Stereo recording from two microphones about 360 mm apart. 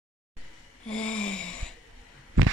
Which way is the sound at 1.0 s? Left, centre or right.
Centre.